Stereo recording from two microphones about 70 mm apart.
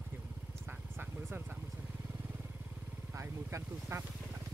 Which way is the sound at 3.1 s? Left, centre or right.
Right.